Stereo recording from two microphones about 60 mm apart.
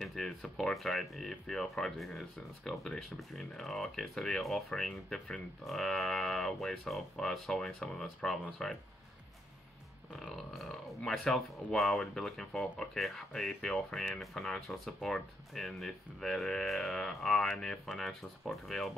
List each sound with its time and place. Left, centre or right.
0.0 s speech: centre
10.1 s speech: centre